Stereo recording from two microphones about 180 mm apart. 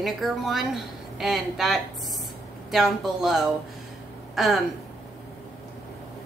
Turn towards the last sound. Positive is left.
turn(degrees=0)  # may be behind; listen again after turning